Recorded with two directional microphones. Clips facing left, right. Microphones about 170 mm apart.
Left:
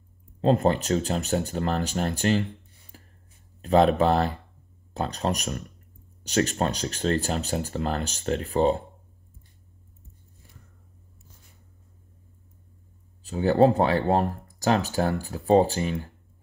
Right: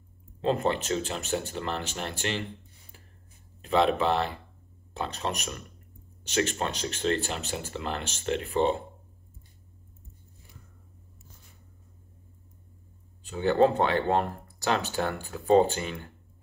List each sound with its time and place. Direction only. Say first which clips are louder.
0.4 s speech: left 5 dB; 40° left (ahead or behind)
2.9 s a sound: left 6 dB; 40° left (ahead or behind)
3.6 s speech: left 5 dB; 40° left (ahead or behind)
13.2 s speech: left 3 dB; 40° left (ahead or behind)